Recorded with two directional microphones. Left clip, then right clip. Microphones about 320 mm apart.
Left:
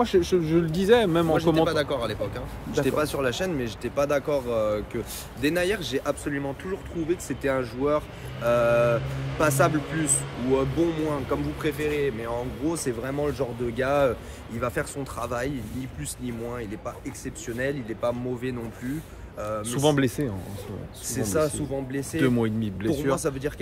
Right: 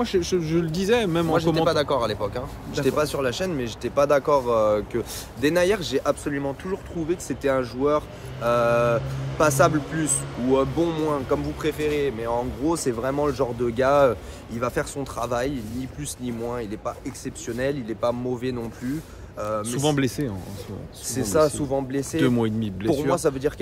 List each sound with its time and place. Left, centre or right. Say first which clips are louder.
0.0 s speech: left 1 dB; centre
1.6 s speech: right 3 dB; centre
19.7 s speech: left 4 dB; centre
21.1 s speech: right 5 dB; centre
22.2 s speech: right 1 dB; centre
23.1 s speech: right 5 dB; centre